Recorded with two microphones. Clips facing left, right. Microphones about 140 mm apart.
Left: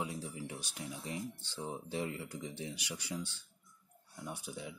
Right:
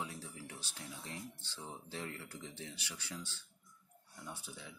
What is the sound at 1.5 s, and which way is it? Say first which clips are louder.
Speech: left 8 dB; 15° left (ahead or behind).